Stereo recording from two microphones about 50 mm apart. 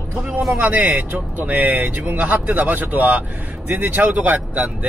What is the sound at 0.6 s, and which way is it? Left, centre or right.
Speech, right.